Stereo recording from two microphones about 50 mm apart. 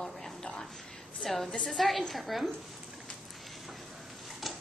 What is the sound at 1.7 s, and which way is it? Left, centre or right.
Speech, centre.